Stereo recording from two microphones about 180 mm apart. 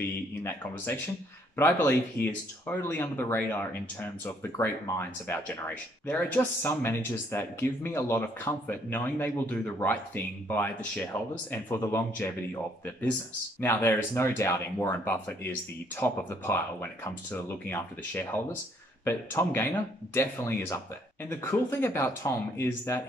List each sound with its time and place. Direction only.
0.4 s speech: 10° left (ahead or behind)
2.2 s speech: 60° left (ahead or behind)
2.6 s speech: 10° left (ahead or behind)
13.6 s speech: 15° left (ahead or behind)